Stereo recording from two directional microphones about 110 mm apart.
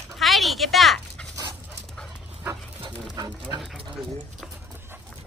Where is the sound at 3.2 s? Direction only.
40° right (ahead or behind).